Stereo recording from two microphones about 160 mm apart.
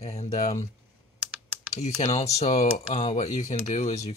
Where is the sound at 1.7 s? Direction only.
45° left (ahead or behind).